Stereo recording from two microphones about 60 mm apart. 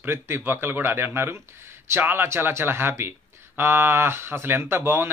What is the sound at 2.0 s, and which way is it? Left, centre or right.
Speech, right.